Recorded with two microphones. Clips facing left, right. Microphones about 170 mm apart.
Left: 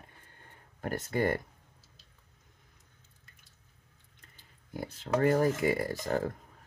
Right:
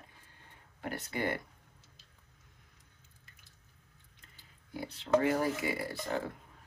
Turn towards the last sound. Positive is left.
turn(degrees=45)  # may be behind; listen again after turning